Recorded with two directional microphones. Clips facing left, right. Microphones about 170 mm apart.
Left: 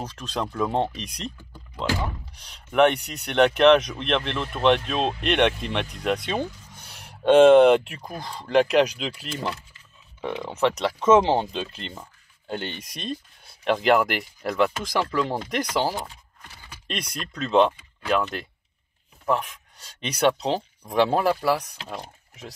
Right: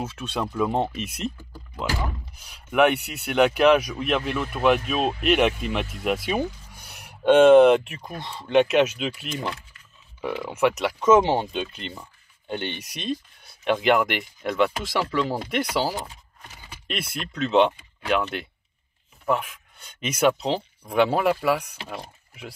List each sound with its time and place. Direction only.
0.0 s speech: 5° right (ahead or behind)
10.9 s speech: 30° left (ahead or behind)
11.3 s speech: 5° right (ahead or behind)